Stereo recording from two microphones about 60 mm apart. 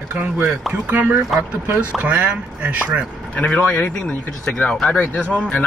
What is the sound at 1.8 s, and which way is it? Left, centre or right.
Speech, right.